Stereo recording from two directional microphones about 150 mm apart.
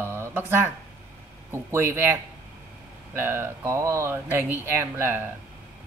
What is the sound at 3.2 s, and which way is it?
Speech, 15° right (ahead or behind).